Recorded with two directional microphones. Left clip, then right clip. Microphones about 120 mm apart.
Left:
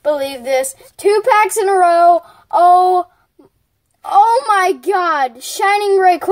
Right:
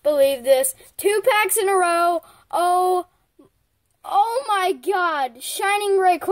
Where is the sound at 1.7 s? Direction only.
30° right (ahead or behind).